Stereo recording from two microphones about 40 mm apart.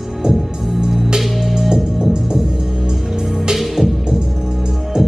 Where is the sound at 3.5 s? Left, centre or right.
Centre.